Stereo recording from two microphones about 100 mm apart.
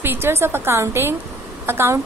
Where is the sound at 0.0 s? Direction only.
25° right (ahead or behind).